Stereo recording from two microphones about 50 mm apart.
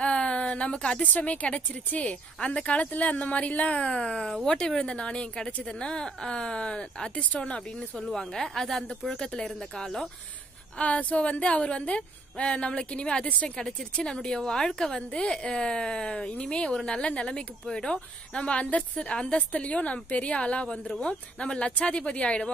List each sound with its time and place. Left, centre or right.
0.0 s a sound: left
1.0 s a woman's voice: left
8.0 s a woman's voice: centre
10.8 s a woman's voice: left
13.6 s a woman's voice: centre; by 22.5 s left